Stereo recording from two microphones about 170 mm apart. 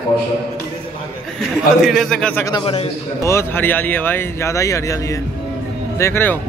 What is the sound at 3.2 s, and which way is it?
Speech, 15° left (ahead or behind).